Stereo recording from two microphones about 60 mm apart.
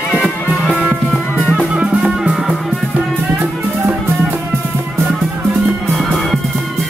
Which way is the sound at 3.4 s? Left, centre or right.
Right.